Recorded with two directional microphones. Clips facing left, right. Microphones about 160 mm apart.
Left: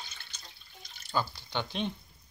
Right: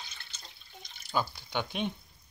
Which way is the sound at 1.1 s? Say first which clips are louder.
Right 1 dB; 15° right (ahead or behind).